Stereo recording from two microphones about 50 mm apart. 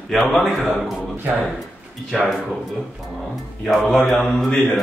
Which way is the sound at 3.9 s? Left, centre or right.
Centre.